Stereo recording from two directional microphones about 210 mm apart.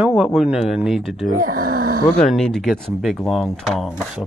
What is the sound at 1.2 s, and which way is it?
Speech, 40° right (ahead or behind).